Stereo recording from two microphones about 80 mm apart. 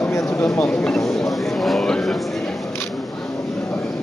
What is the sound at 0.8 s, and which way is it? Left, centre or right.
Speech, centre.